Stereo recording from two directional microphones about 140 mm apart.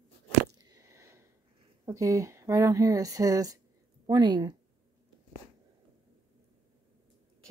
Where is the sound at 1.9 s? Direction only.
20° right (ahead or behind).